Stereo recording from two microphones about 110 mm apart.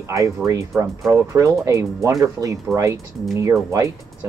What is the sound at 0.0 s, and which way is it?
Speech, 30° right (ahead or behind).